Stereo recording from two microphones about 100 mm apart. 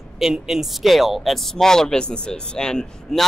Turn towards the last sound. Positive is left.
turn(degrees=5)  # may be behind; listen again after turning